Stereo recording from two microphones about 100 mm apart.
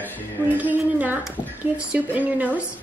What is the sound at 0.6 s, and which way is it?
A woman's voice, 15° right (ahead or behind).